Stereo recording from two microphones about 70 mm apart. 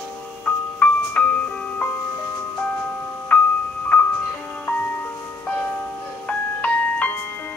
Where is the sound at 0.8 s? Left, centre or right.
Left.